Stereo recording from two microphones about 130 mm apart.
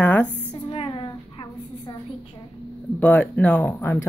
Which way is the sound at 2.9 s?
10° left (ahead or behind).